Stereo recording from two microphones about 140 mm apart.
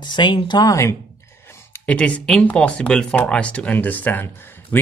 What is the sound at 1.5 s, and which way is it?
Speech, 10° left (ahead or behind).